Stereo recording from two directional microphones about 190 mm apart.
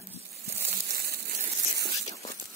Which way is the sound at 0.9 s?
55° right (ahead or behind).